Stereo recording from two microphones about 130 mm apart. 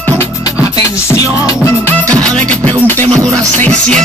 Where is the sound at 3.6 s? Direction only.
10° left (ahead or behind).